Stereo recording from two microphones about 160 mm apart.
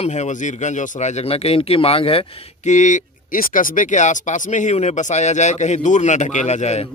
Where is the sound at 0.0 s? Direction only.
45° left (ahead or behind).